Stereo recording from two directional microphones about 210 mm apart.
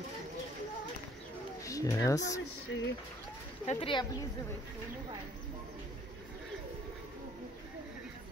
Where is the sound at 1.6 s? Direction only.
15° left (ahead or behind).